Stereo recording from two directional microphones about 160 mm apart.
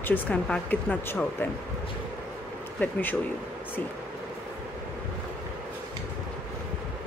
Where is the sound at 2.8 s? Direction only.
10° left (ahead or behind).